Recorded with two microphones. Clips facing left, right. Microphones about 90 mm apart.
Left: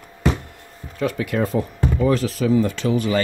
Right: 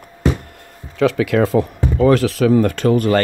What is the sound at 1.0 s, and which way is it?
Speech, 90° right.